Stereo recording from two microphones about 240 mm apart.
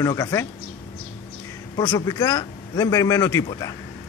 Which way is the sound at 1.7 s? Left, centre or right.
Centre.